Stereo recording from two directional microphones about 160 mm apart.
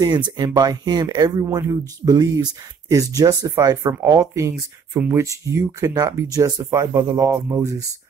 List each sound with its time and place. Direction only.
0.0 s speech: 25° right (ahead or behind)